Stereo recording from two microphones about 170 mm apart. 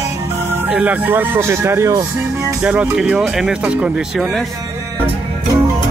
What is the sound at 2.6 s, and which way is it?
Speech, 5° right (ahead or behind).